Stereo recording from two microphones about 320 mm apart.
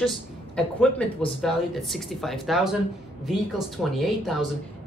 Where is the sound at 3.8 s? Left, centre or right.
Centre.